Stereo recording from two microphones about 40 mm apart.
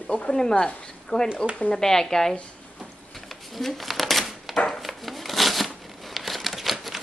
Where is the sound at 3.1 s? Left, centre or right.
Centre.